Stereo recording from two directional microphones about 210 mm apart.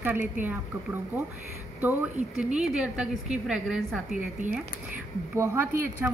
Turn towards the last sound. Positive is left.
turn(degrees=-10)  # may be behind; listen again after turning